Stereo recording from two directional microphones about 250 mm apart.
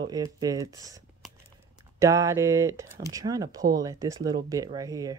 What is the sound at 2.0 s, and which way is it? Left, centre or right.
Speech, centre.